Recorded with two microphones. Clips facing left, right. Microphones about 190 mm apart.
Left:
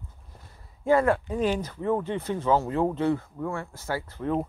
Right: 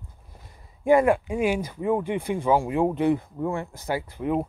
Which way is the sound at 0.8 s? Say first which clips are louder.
Right 3 dB; 15° right (ahead or behind).